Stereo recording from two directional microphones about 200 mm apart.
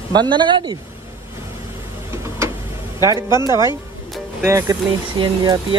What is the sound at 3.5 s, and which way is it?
Speech, 15° right (ahead or behind).